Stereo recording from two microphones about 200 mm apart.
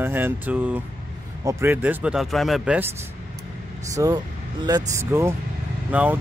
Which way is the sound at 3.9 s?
15° right (ahead or behind).